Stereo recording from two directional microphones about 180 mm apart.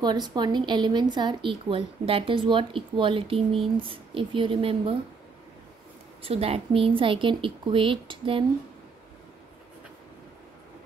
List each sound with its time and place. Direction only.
0.0 s a woman's voice: 25° right (ahead or behind)
6.2 s a woman's voice: 35° right (ahead or behind)